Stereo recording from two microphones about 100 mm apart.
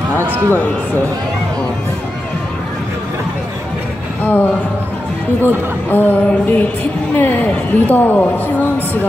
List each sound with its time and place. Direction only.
0.3 s a man's voice: 20° right (ahead or behind)
4.2 s a woman's voice: 15° left (ahead or behind)